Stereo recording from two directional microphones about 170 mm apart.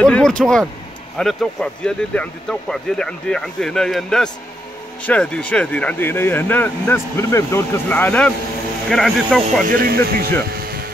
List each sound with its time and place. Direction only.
0.0 s speech: 5° left (ahead or behind)
9.7 s speech: 60° right (ahead or behind)